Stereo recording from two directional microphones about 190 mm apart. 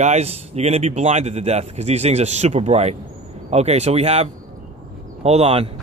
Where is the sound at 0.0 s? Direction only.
35° right (ahead or behind).